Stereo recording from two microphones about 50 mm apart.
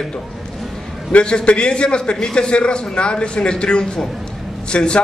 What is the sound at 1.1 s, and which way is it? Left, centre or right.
A man's voice, centre.